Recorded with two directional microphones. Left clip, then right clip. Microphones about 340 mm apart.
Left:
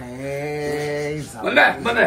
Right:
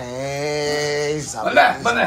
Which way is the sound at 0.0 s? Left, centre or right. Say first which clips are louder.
Right 3 dB; centre.